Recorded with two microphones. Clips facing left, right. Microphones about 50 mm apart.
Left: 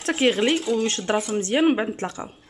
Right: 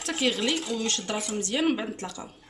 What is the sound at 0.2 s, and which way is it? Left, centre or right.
Speech, left.